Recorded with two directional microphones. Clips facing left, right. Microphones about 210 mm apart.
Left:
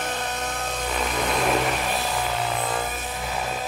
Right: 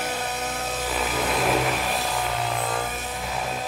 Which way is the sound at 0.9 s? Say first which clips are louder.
Left 1 dB; 5° right (ahead or behind).